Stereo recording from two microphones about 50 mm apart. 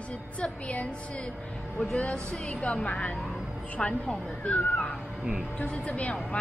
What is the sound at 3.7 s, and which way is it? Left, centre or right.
A woman's voice, left.